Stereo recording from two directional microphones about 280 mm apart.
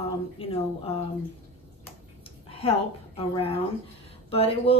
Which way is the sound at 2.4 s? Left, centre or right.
Left.